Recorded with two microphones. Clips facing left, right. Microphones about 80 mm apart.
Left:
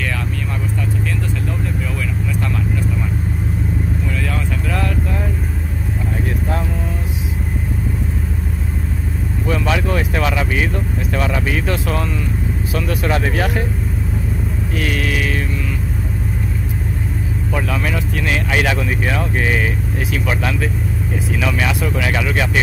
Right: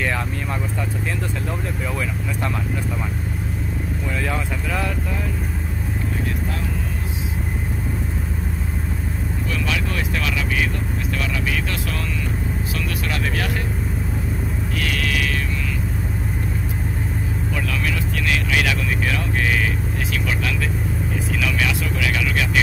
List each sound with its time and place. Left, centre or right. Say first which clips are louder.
9.5 s vehicle: left 8 dB; left
11.1 s music: left 6 dB; left
12.7 s vehicle: left 10 dB; left
14.8 s mantra: left 3 dB; left
17.6 s vehicle: left 5 dB; left
21.4 s speech: left 4 dB; left